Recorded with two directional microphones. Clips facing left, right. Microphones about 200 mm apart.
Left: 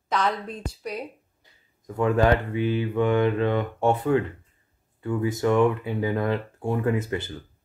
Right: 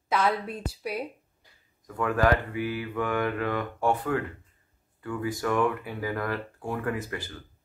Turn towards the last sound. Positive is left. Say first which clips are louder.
# left 6 dB
turn(degrees=25)  # may be behind; listen again after turning